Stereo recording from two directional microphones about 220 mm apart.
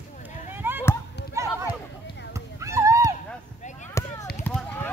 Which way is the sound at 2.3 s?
15° right (ahead or behind).